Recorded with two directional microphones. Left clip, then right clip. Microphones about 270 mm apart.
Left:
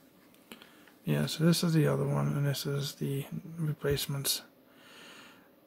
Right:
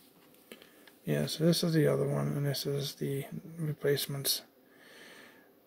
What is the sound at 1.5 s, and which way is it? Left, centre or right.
Speech, left.